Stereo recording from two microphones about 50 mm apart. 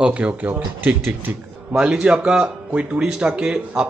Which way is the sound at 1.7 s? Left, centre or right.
Centre.